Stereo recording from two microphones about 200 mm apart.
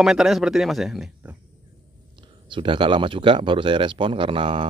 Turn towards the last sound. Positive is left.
turn(degrees=-25)  # may be behind; listen again after turning